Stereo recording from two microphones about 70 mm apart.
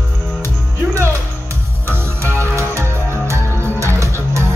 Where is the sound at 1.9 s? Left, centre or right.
Right.